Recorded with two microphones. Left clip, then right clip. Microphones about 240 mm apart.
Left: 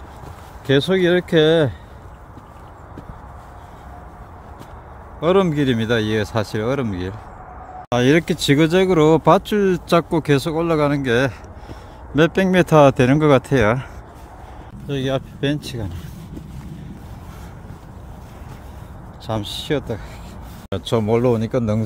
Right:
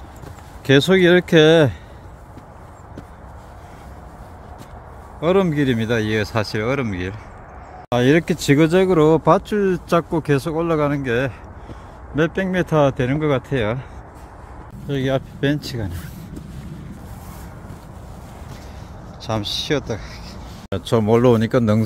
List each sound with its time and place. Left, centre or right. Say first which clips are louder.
0.7 s speech: right 3 dB; centre
5.2 s speech: left 1 dB; centre; by 13.8 s left
14.9 s speech: right 1 dB; centre
19.3 s speech: right 1 dB; centre
21.2 s speech: right 3 dB; centre